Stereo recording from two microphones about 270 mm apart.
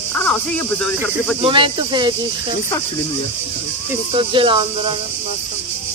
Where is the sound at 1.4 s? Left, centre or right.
Centre.